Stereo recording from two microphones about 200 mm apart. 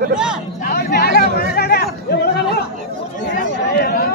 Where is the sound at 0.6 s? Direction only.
50° left (ahead or behind).